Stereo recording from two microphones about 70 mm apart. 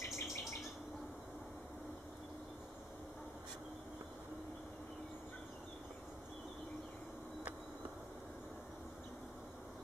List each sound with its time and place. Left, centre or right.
0.0 s bird: left